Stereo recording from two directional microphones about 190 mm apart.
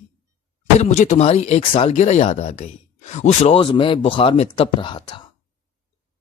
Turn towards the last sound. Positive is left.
turn(degrees=25)  # may be behind; listen again after turning